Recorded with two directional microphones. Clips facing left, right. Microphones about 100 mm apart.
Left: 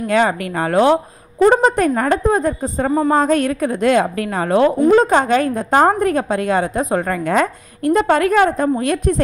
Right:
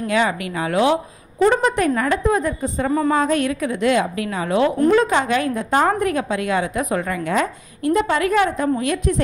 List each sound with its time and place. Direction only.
0.1 s a woman's voice: 45° left (ahead or behind)